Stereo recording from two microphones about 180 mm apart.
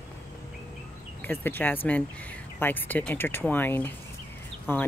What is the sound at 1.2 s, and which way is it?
Speech, 10° left (ahead or behind).